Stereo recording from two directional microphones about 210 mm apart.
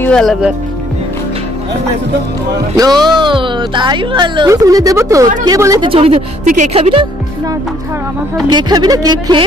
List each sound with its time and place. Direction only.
0.0 s speech: 5° left (ahead or behind)
2.7 s speech: 20° right (ahead or behind)
6.4 s speech: 35° right (ahead or behind)
8.5 s speech: 20° right (ahead or behind)